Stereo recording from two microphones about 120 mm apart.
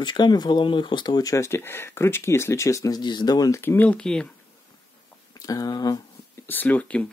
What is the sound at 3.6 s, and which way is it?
Speech, 15° left (ahead or behind).